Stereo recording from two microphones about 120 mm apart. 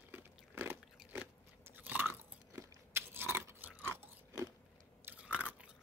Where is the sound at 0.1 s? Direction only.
15° right (ahead or behind).